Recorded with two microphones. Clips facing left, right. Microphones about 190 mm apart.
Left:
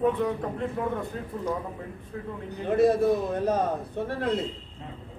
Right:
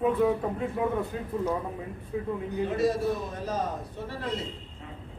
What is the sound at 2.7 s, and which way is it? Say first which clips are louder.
A man's voice: left 7 dB; 60° left (ahead or behind).